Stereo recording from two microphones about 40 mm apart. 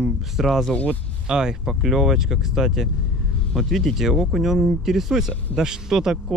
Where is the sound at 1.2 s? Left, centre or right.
Centre.